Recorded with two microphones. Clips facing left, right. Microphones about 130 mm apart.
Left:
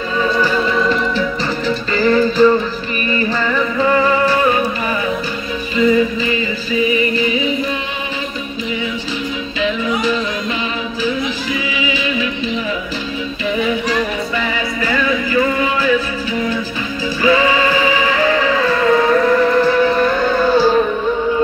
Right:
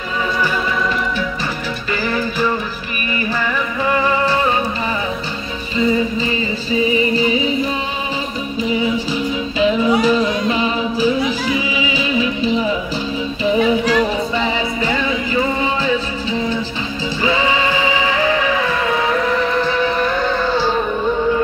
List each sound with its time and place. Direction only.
2.0 s music: 10° right (ahead or behind)
5.8 s music: 30° right (ahead or behind)
9.6 s music: 35° right (ahead or behind); by 20.8 s 5° left (ahead or behind)